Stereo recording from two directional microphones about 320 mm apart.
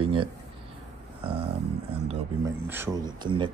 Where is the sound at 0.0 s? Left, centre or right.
Centre.